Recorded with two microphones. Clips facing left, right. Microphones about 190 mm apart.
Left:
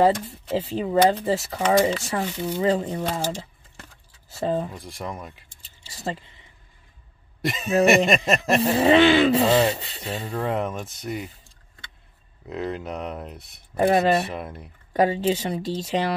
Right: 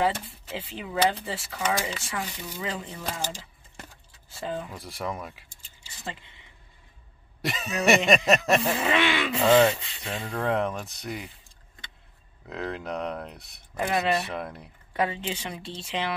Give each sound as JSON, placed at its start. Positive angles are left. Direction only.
{"t": 0.0, "sound": "speech", "side_deg": 40}
{"t": 4.3, "sound": "speech", "side_deg": 40}
{"t": 4.7, "sound": "speech", "side_deg": -5}
{"t": 5.6, "sound": "keys jangling", "side_deg": 40}
{"t": 7.4, "sound": "speech", "side_deg": 0}
{"t": 8.5, "sound": "speech", "side_deg": 35}
{"t": 10.2, "sound": "speech", "side_deg": 5}
{"t": 12.4, "sound": "speech", "side_deg": 0}
{"t": 13.7, "sound": "speech", "side_deg": 35}
{"t": 14.3, "sound": "speech", "side_deg": 0}
{"t": 14.9, "sound": "speech", "side_deg": 35}